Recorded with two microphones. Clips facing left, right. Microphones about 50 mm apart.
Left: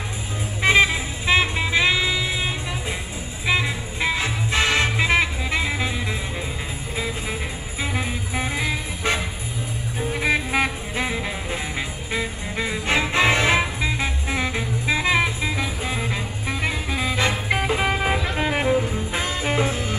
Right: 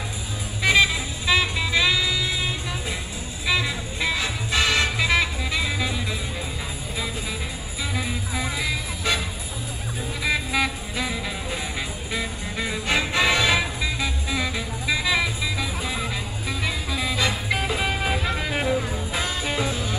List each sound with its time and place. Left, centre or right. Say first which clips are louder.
0.6 s music: left 2 dB; left
7.8 s music: left 2 dB; left